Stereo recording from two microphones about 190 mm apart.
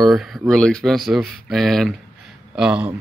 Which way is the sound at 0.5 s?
5° left (ahead or behind).